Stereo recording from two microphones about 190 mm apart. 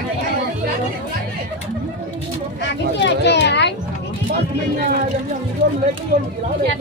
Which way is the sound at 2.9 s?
65° left (ahead or behind).